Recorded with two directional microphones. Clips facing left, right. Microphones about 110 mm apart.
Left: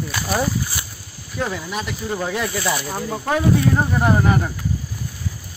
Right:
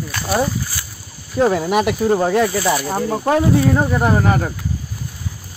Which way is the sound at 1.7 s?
65° right (ahead or behind).